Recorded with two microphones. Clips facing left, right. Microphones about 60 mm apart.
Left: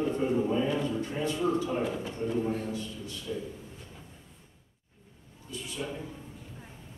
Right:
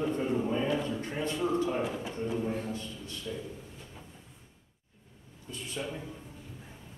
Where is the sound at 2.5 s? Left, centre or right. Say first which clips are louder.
Left 2 dB; right.